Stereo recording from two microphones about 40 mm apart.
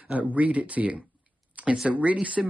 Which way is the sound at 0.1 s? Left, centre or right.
Right.